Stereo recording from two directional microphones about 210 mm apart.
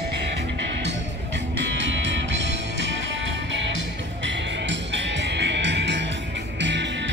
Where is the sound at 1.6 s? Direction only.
60° right (ahead or behind).